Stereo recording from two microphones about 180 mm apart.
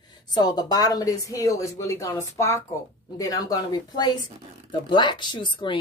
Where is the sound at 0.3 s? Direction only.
20° left (ahead or behind).